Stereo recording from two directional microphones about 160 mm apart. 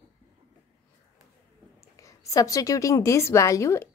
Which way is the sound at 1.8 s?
20° left (ahead or behind).